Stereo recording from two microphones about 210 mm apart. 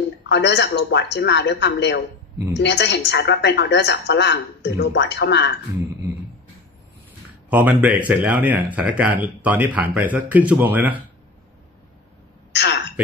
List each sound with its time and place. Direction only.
0.3 s a woman's voice: 55° left (ahead or behind)
7.4 s speech: 5° right (ahead or behind)
12.5 s a sound: 55° left (ahead or behind)